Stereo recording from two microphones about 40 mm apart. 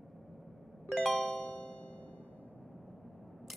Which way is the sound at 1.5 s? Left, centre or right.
Left.